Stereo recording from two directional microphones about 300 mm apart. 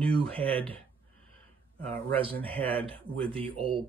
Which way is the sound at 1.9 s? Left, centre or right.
Centre.